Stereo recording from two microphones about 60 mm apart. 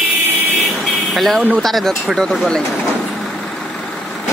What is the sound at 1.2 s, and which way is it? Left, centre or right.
Speech, centre.